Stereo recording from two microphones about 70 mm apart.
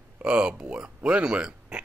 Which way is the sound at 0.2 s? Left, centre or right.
Centre.